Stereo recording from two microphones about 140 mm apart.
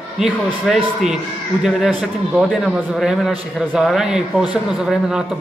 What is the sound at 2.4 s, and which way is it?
A man's voice, 5° right (ahead or behind).